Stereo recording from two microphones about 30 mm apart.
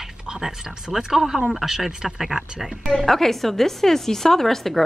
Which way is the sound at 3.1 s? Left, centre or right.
Centre.